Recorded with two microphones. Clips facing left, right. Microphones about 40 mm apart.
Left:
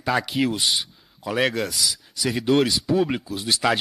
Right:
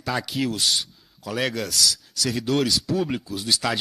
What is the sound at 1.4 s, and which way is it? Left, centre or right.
A man's voice, centre.